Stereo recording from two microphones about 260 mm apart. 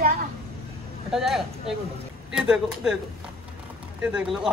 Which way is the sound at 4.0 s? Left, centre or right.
Centre.